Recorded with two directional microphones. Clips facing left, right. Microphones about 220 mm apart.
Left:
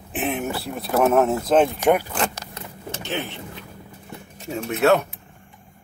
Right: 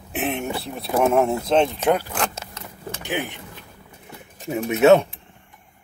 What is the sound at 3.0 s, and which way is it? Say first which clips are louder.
Speech: right 1 dB; 15° right (ahead or behind).